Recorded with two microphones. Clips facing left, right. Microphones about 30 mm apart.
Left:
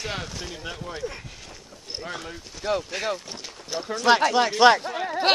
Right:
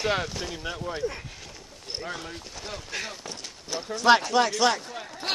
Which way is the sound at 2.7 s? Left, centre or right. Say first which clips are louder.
Left 14 dB; left.